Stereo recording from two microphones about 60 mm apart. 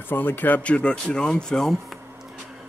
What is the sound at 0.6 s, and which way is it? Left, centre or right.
Speech, left.